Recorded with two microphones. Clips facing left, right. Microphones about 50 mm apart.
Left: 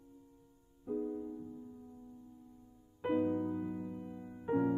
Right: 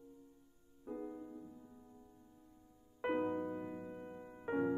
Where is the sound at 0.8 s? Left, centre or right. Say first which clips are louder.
Left 7 dB; centre.